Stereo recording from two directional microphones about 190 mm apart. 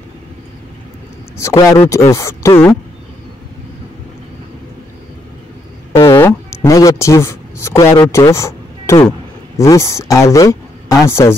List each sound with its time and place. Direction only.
1.4 s speech: 15° left (ahead or behind)
6.0 s speech: 15° left (ahead or behind)